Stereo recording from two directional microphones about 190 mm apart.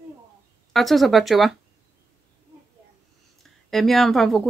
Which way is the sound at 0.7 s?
Centre (ahead or behind).